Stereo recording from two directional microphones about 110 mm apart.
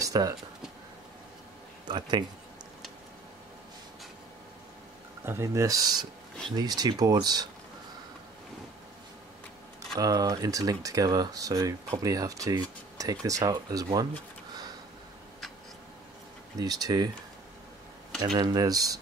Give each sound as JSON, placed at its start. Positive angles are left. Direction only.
{"t": 0.0, "sound": "a sound", "side_deg": -35}
{"t": 1.9, "sound": "speech", "side_deg": -45}
{"t": 5.2, "sound": "speech", "side_deg": -25}
{"t": 9.9, "sound": "speech", "side_deg": -35}
{"t": 16.5, "sound": "speech", "side_deg": -35}
{"t": 18.2, "sound": "speech", "side_deg": -40}